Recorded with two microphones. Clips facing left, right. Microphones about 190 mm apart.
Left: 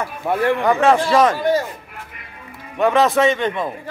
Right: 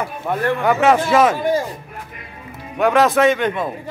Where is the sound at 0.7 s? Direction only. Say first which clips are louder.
Right 2 dB; 5° right (ahead or behind).